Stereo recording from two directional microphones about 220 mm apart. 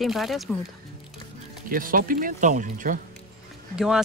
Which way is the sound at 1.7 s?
40° right (ahead or behind).